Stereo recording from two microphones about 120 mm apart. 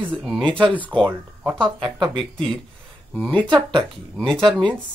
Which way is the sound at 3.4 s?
40° right (ahead or behind).